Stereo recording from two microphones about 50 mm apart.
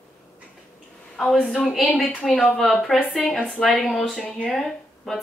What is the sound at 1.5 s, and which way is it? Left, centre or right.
Speech, centre.